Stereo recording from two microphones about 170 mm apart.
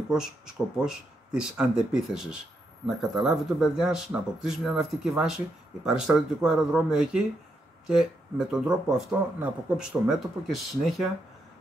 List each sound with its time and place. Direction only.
0.1 s speech: 5° right (ahead or behind)